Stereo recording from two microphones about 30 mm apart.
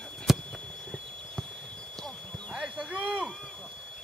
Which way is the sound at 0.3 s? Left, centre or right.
Centre.